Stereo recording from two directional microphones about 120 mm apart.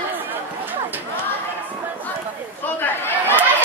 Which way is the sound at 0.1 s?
15° right (ahead or behind).